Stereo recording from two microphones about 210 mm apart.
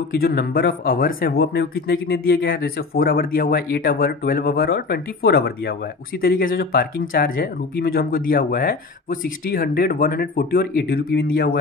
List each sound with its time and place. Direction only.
0.1 s speech: 45° left (ahead or behind)